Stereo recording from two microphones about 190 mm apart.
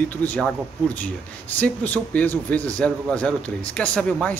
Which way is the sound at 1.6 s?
10° left (ahead or behind).